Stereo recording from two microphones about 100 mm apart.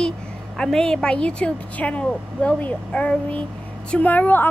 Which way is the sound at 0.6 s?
5° left (ahead or behind).